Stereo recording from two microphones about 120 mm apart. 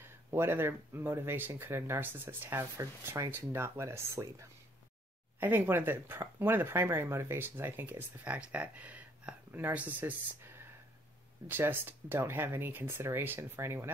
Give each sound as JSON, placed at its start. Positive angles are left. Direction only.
{"t": 0.0, "sound": "speech", "side_deg": -20}